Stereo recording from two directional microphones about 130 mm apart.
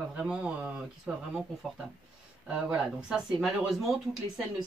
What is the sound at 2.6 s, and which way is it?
Speech, 5° right (ahead or behind).